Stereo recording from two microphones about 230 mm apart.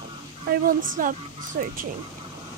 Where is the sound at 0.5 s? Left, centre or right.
Right.